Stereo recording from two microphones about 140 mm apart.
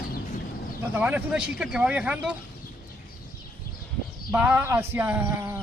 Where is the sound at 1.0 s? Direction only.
10° right (ahead or behind).